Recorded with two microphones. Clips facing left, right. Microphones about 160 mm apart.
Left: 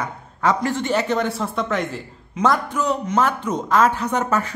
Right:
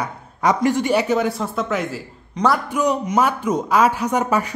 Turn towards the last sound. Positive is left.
turn(degrees=-10)  # may be behind; listen again after turning